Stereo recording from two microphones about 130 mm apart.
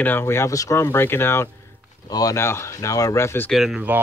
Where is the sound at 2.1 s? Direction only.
30° left (ahead or behind).